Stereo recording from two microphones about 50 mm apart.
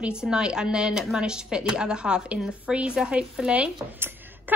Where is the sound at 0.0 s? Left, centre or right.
Centre.